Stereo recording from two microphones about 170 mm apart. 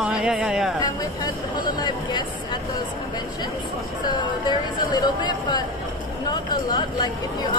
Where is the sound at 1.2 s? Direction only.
25° left (ahead or behind).